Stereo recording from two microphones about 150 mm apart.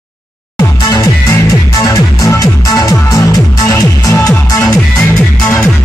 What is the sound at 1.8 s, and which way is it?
Music, 20° left (ahead or behind).